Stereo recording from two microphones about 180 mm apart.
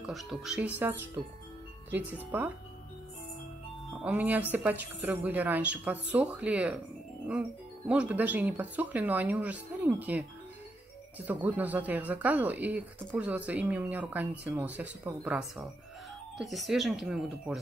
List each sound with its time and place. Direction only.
0.0 s speech: centre (ahead or behind)
4.0 s speech: 10° right (ahead or behind)
7.9 s speech: 5° right (ahead or behind)